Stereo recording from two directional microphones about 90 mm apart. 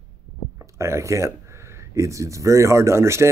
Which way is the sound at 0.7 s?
30° right (ahead or behind).